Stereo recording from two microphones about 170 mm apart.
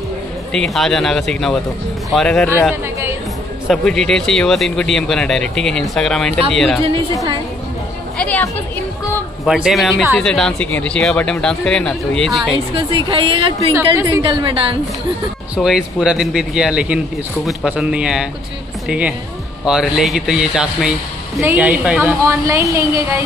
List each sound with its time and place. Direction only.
0.5 s speech: centre (ahead or behind)
2.7 s chatter: 15° right (ahead or behind)
3.6 s speech: centre (ahead or behind)
8.2 s a woman's voice: 10° left (ahead or behind)
9.5 s speech: centre (ahead or behind)
12.5 s a woman's voice: 30° right (ahead or behind)
15.5 s speech: 5° right (ahead or behind)